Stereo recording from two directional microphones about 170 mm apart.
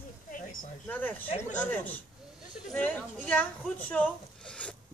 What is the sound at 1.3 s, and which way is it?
Speech, 40° left (ahead or behind).